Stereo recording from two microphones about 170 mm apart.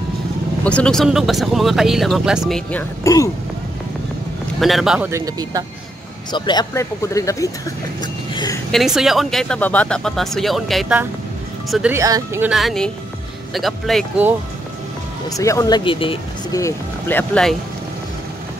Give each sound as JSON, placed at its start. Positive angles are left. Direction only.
{"t": 0.7, "sound": "speech", "side_deg": 5}
{"t": 2.7, "sound": "speech", "side_deg": 15}
{"t": 4.6, "sound": "speech", "side_deg": 0}
{"t": 5.1, "sound": "speech", "side_deg": -20}
{"t": 6.3, "sound": "speech", "side_deg": 25}
{"t": 8.0, "sound": "music", "side_deg": 25}
{"t": 8.7, "sound": "speech", "side_deg": 0}
{"t": 11.9, "sound": "speech", "side_deg": -15}
{"t": 12.4, "sound": "speech", "side_deg": 0}
{"t": 15.2, "sound": "speech", "side_deg": 20}
{"t": 16.5, "sound": "speech", "side_deg": 15}